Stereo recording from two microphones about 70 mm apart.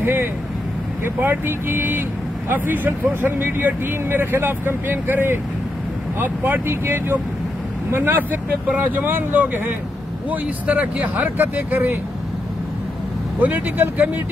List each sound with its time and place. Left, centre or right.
0.0 s vehicle: right
1.0 s speech: right
13.4 s speech: right